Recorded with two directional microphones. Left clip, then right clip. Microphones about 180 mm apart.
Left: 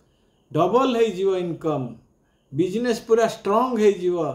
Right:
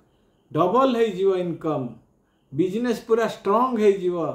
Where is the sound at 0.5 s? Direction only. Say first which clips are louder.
Even; 15° left (ahead or behind).